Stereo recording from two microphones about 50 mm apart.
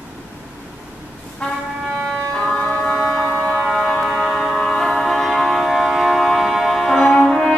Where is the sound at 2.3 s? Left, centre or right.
Centre.